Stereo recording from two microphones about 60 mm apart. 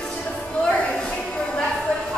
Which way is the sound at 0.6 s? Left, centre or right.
Centre.